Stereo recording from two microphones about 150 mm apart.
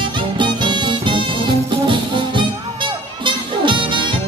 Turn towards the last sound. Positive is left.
turn(degrees=-35)  # may be behind; listen again after turning